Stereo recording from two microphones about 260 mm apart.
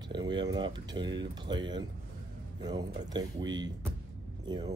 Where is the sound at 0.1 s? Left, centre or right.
Centre.